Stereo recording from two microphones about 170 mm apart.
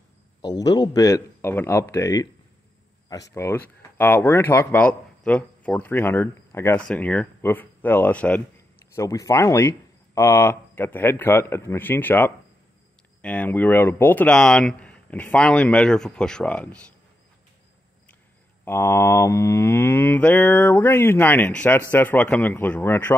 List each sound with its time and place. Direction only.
0.4 s speech: 25° left (ahead or behind); by 16.8 s 5° left (ahead or behind)
18.7 s speech: 15° left (ahead or behind)